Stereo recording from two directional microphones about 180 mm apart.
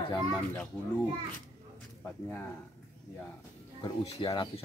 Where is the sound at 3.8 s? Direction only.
25° left (ahead or behind).